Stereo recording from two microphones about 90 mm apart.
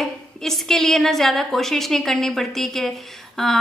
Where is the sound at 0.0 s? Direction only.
5° left (ahead or behind).